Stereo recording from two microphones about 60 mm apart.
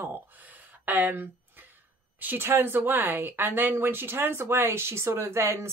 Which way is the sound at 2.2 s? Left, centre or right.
Right.